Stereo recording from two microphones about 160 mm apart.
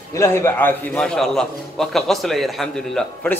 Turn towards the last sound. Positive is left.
turn(degrees=0)  # may be behind; listen again after turning